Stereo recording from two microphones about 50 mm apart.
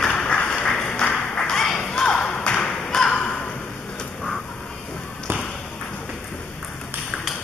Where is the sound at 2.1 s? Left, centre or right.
Centre.